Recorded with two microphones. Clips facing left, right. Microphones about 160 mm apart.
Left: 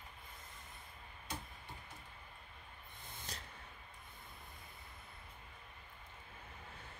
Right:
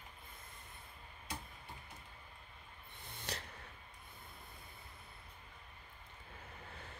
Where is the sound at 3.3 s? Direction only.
70° right (ahead or behind).